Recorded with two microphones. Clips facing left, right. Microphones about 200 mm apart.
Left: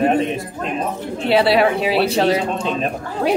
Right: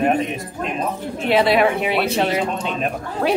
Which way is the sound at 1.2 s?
30° left (ahead or behind).